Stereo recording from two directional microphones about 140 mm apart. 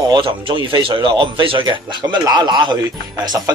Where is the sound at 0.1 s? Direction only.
35° right (ahead or behind).